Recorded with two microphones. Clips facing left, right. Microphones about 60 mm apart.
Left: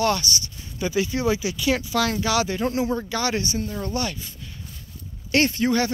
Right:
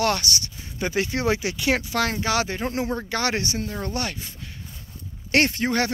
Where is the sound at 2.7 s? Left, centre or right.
Right.